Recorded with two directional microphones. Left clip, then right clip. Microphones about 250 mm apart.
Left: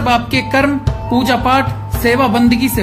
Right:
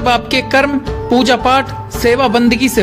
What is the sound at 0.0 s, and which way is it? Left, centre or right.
Speech, right.